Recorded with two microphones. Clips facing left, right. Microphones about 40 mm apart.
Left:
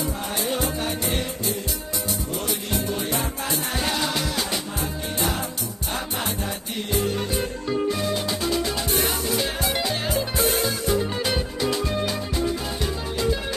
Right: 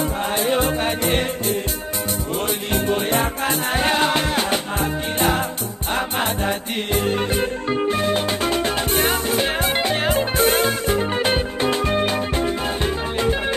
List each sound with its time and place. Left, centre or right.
0.4 s music: right
2.7 s music: right